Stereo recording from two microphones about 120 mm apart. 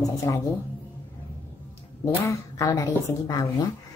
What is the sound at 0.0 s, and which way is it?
Speech, 30° left (ahead or behind).